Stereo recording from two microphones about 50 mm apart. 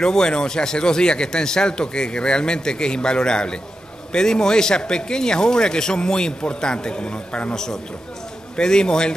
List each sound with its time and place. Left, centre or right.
0.0 s a man's voice: centre